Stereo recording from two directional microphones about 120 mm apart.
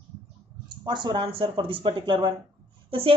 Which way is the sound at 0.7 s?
40° right (ahead or behind).